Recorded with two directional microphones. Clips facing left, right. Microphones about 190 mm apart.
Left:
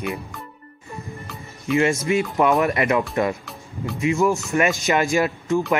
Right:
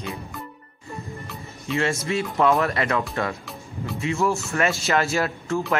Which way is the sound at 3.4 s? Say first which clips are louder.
Left 2 dB; centre (ahead or behind).